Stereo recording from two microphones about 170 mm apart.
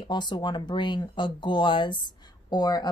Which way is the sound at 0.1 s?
25° left (ahead or behind).